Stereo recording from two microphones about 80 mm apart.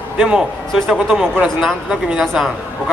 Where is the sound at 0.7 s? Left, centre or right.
Centre.